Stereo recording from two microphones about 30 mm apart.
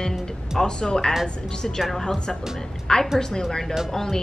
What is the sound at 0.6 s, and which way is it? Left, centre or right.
Speech, left.